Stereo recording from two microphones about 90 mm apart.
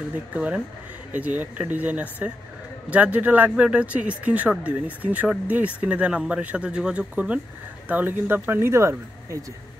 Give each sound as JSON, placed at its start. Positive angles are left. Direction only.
{"t": 0.3, "sound": "speech", "side_deg": -15}